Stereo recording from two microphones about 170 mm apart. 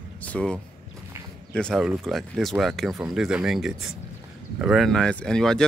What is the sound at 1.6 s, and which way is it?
Speech, centre (ahead or behind).